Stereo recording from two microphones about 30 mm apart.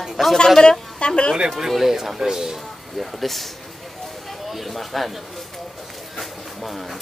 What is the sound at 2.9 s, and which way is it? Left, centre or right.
Speech, centre.